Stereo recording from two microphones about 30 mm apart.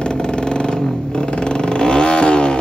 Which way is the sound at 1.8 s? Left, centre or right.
Left.